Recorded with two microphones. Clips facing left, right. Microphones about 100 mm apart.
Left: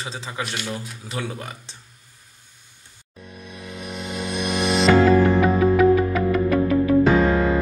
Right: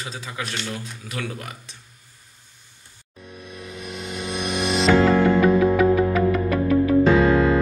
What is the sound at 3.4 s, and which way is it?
Music, centre (ahead or behind).